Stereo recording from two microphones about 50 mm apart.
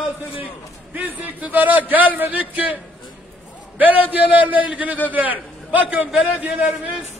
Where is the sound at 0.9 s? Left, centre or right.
Right.